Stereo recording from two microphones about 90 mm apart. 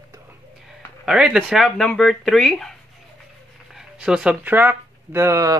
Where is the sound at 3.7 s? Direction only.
10° right (ahead or behind); by 5.6 s 35° right (ahead or behind).